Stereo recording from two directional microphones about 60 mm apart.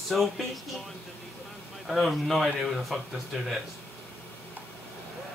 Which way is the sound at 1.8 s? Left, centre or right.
Centre.